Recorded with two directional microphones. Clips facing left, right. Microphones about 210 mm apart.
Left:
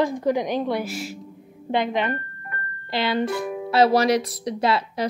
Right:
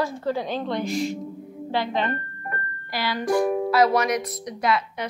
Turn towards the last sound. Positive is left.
turn(degrees=30)  # may be behind; listen again after turning